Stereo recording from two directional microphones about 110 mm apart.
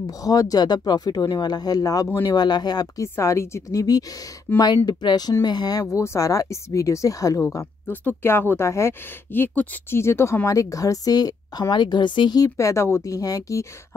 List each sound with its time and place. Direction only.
0.0 s speech: 35° left (ahead or behind)
3.2 s speech: 25° left (ahead or behind)
4.5 s speech: 15° left (ahead or behind)
4.8 s speech: 40° left (ahead or behind)
7.4 s speech: 20° left (ahead or behind)